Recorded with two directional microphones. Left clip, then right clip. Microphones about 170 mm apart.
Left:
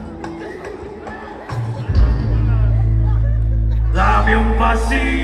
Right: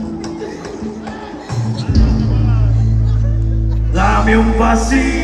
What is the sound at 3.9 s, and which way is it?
Music, 40° right (ahead or behind).